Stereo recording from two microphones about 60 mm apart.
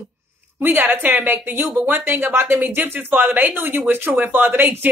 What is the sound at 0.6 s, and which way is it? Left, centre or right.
Speech, right.